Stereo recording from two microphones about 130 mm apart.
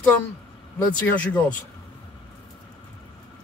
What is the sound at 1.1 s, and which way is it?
Speech, 10° left (ahead or behind).